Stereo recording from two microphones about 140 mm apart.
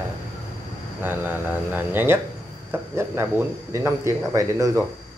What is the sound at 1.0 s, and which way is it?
A man's voice, 15° right (ahead or behind).